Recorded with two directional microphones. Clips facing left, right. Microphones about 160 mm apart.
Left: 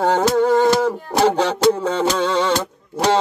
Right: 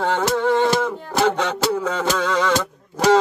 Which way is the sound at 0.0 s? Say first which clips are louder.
Left 4 dB; 40° left (ahead or behind).